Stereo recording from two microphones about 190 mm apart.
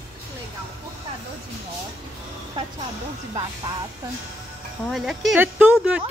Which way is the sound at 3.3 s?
20° right (ahead or behind).